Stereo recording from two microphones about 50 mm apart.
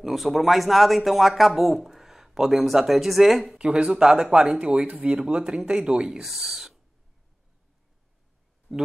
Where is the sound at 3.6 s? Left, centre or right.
Centre.